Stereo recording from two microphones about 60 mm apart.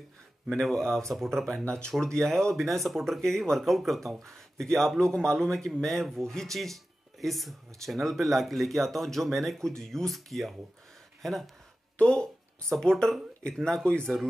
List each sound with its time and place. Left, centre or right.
0.5 s speech: centre
12.0 s speech: centre
12.7 s speech: centre